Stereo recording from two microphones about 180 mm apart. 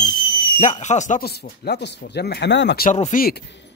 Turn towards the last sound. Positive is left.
turn(degrees=70)  # may be behind; listen again after turning